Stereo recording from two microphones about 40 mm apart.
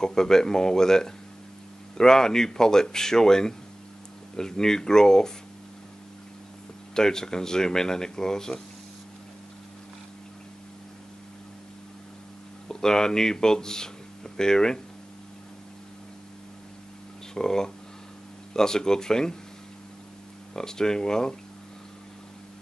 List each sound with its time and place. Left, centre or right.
0.0 s speech: centre
6.9 s speech: centre
12.6 s speech: centre
17.3 s speech: centre
20.5 s speech: centre